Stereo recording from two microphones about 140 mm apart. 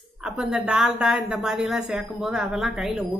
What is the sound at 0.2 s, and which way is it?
A woman's voice, 5° right (ahead or behind).